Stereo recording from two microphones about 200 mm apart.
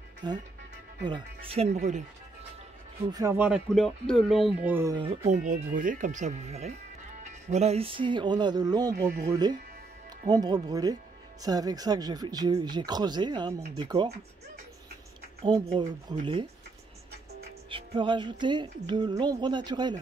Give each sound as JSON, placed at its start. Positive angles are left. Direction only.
{"t": 0.2, "sound": "speech", "side_deg": -20}
{"t": 3.1, "sound": "speech", "side_deg": -15}
{"t": 4.6, "sound": "speech", "side_deg": -10}
{"t": 4.9, "sound": "speech", "side_deg": -30}
{"t": 15.4, "sound": "speech", "side_deg": -20}
{"t": 17.6, "sound": "speech", "side_deg": -25}